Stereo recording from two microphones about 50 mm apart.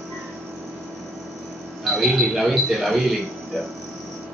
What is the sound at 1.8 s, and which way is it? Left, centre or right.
A man's voice, centre.